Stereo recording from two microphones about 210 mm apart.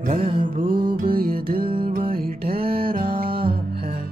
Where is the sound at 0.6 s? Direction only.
45° right (ahead or behind).